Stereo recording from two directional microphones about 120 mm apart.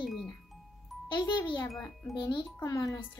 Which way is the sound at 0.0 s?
Centre (ahead or behind).